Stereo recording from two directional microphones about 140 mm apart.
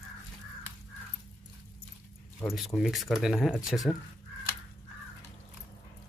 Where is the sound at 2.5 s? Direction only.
Centre (ahead or behind).